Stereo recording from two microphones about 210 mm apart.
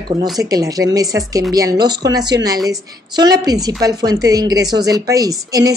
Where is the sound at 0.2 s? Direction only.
15° right (ahead or behind).